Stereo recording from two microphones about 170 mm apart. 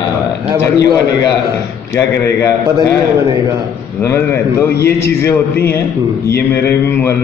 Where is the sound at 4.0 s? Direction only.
15° left (ahead or behind).